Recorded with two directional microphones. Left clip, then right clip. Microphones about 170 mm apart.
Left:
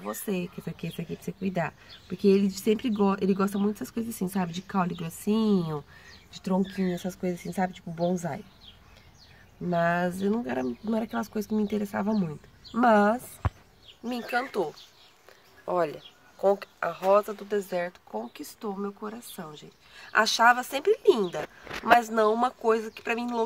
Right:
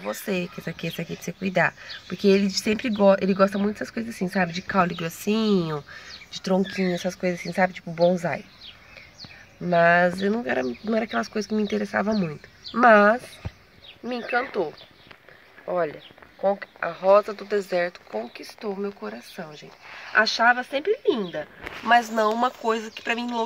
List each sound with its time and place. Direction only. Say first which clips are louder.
0.2 s speech: right 5 dB; 5° right (ahead or behind)
9.7 s speech: right 8 dB; centre (ahead or behind)
15.6 s speech: right 2 dB; 20° left (ahead or behind)
17.0 s speech: right 5 dB; centre (ahead or behind)
20.1 s speech: right 2 dB; 5° left (ahead or behind)
21.8 s speech: right 2 dB; centre (ahead or behind)